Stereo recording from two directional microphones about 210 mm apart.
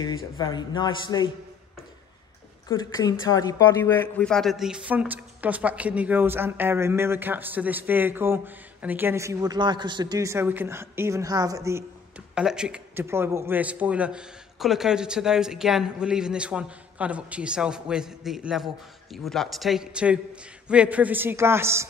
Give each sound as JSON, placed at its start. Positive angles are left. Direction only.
{"t": 0.0, "sound": "a man's voice", "side_deg": 20}
{"t": 2.7, "sound": "a woman's voice", "side_deg": 20}
{"t": 12.4, "sound": "a man's voice", "side_deg": -5}